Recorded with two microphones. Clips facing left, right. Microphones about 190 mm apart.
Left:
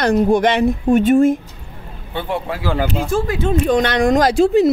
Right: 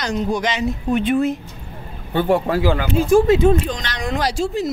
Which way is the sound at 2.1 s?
45° right (ahead or behind).